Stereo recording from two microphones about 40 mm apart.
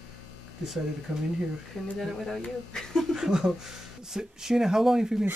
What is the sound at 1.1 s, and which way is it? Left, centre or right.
Speech, centre.